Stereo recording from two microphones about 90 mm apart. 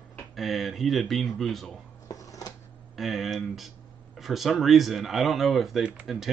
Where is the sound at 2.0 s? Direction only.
40° left (ahead or behind).